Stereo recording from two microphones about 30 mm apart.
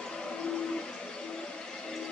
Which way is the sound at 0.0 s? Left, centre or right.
Left.